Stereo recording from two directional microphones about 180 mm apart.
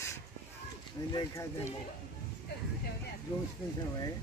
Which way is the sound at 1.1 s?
20° left (ahead or behind).